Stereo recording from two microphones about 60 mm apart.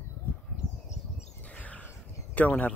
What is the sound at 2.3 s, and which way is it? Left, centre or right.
Speech, left.